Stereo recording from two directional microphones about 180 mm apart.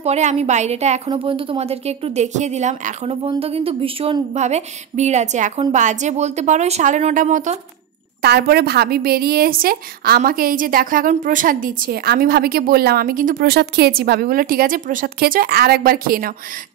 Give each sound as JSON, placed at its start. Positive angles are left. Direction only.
{"t": 0.0, "sound": "a woman's voice", "side_deg": -40}
{"t": 8.2, "sound": "a woman's voice", "side_deg": -60}